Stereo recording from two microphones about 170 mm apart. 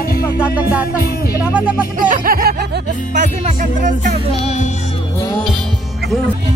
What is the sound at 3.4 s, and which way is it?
Music, 45° right (ahead or behind).